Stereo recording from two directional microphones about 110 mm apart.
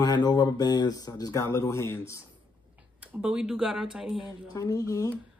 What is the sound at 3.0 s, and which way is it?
Speech, 15° right (ahead or behind).